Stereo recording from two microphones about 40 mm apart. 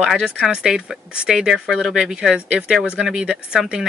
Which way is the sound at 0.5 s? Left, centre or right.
Right.